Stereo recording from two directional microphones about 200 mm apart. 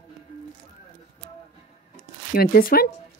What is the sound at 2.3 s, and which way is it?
Speech, 45° left (ahead or behind).